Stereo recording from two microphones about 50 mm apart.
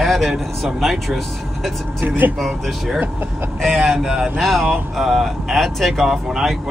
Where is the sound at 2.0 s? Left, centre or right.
Right.